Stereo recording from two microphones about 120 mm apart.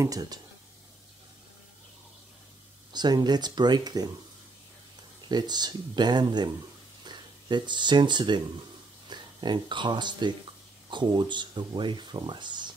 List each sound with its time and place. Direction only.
0.0 s speech: 30° right (ahead or behind)
2.9 s speech: 35° right (ahead or behind)
5.3 s speech: 35° right (ahead or behind)